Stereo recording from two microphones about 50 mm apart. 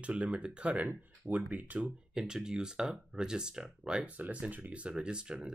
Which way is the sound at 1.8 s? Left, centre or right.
Centre.